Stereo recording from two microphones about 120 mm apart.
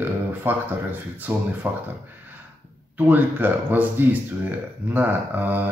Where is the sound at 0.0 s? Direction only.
15° right (ahead or behind).